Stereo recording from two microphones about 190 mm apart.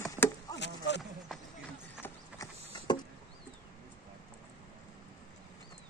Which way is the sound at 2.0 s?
15° left (ahead or behind).